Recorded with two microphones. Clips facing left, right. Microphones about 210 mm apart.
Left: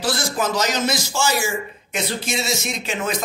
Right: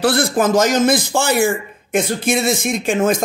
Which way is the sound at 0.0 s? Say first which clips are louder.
Right 7 dB; 60° right (ahead or behind).